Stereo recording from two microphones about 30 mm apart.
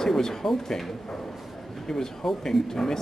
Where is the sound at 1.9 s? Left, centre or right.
Centre.